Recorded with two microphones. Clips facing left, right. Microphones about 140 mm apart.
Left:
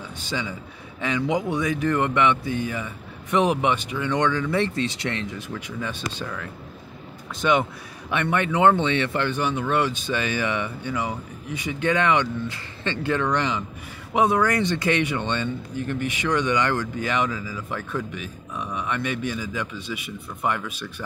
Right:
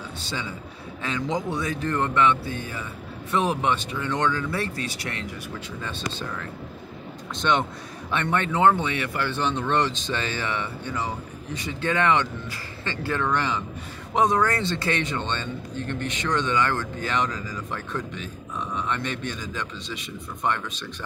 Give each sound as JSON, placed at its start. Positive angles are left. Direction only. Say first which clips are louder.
{"t": 1.0, "sound": "a man's voice", "louder": "left 3 dB", "side_deg": 15}
{"t": 5.8, "sound": "a man's voice", "louder": "left 2 dB", "side_deg": 10}
{"t": 7.3, "sound": "a man's voice", "louder": "left 2 dB", "side_deg": 10}
{"t": 9.3, "sound": "a man's voice", "louder": "left 1 dB", "side_deg": 10}